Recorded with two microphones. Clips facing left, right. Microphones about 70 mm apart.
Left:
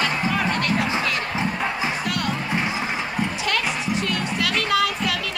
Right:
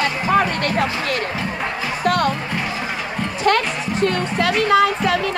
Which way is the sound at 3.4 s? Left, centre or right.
Right.